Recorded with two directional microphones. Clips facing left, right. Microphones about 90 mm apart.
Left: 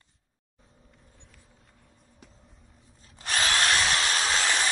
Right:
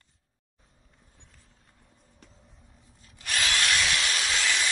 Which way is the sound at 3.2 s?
35° left (ahead or behind).